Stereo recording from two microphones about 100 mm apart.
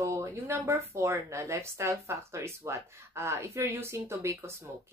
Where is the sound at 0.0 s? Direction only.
25° right (ahead or behind).